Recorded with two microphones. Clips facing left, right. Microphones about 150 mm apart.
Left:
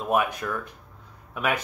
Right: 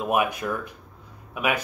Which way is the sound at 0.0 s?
15° right (ahead or behind).